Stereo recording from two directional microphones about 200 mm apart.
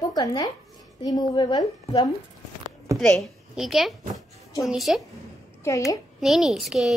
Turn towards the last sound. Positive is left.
turn(degrees=0)  # may be behind; listen again after turning